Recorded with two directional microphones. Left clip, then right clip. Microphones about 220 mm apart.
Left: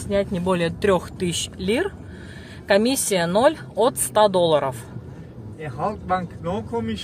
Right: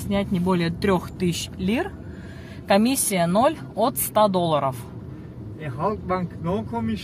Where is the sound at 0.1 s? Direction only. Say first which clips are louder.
Left 3 dB; 10° left (ahead or behind).